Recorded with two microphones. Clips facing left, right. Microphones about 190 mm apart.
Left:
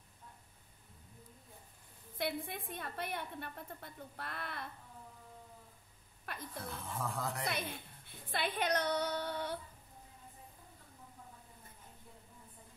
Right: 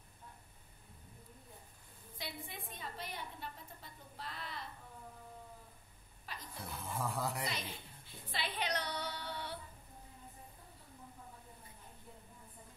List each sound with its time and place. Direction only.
2.1 s a woman's voice: 55° left (ahead or behind)
6.3 s a sound: 55° left (ahead or behind)
6.9 s speech: 5° right (ahead or behind)
7.4 s a woman's voice: 55° left (ahead or behind)